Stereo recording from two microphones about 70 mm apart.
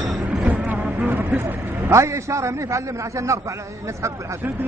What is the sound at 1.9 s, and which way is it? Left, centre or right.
A man's voice, right.